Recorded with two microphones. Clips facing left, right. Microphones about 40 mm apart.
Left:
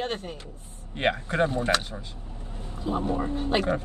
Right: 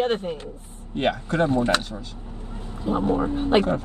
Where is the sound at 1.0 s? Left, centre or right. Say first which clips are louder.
Right 2 dB; centre.